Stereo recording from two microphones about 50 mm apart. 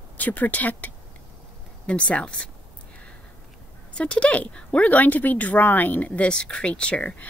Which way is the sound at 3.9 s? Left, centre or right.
Left.